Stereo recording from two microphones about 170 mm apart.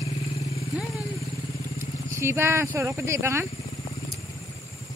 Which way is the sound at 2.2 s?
15° right (ahead or behind).